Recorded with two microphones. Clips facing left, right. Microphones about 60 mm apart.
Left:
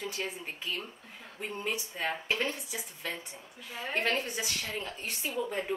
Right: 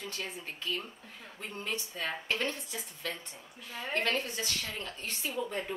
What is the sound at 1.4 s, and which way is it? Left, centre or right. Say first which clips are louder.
A woman's voice: left 3 dB; centre.